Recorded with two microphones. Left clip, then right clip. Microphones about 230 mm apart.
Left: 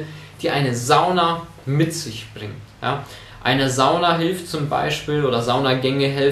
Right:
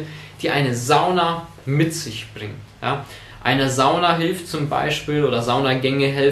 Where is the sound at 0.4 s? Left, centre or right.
Centre.